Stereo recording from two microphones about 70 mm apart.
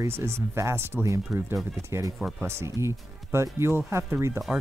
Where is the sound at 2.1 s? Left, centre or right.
Centre.